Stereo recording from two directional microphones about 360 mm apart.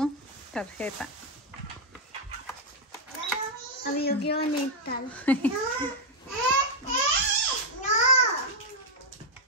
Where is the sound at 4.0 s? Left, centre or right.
Left.